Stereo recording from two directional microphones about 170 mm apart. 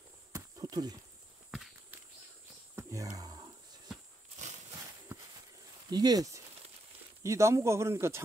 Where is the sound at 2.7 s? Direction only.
15° right (ahead or behind).